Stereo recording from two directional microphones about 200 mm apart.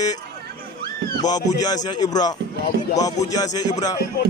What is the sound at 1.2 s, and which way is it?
Speech, 20° left (ahead or behind).